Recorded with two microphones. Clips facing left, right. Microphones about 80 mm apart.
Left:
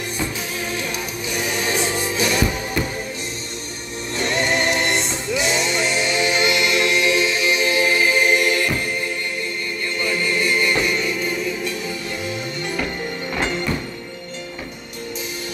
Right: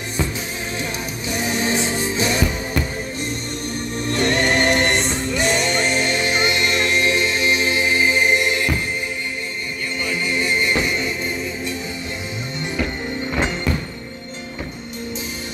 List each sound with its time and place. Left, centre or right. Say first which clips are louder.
1.3 s music: right 2 dB; right
4.1 s music: right 2 dB; right
10.0 s music: left 1 dB; centre